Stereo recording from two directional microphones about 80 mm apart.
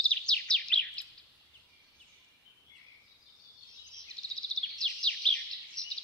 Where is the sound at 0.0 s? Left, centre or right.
Centre.